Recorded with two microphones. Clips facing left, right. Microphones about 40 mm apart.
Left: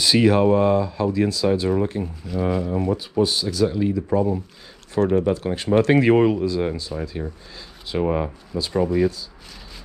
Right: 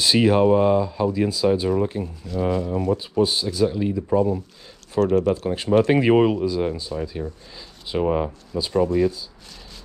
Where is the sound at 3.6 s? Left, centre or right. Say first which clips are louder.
Left 1 dB; centre.